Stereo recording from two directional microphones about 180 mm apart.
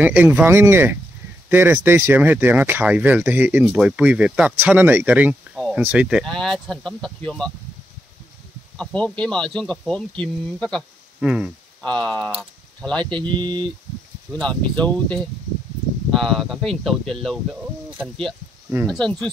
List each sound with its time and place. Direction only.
0.0 s speech: 10° right (ahead or behind)
8.7 s speech: 5° left (ahead or behind)
13.3 s speech: 25° right (ahead or behind)
14.4 s speech: 5° left (ahead or behind)
18.9 s speech: 5° left (ahead or behind)